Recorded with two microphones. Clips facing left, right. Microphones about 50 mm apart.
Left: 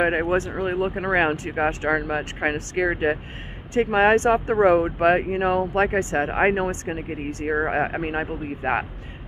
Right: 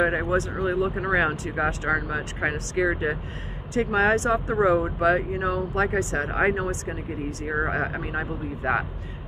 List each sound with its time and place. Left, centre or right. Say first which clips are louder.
0.0 s speech: left 2 dB; left